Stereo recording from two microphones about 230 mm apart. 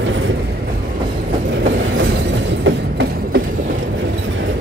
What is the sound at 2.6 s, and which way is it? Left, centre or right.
Train, right.